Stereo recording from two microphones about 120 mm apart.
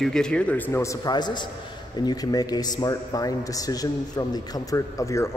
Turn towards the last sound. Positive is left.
turn(degrees=25)  # may be behind; listen again after turning